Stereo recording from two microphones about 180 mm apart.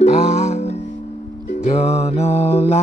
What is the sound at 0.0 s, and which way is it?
Music, 40° left (ahead or behind).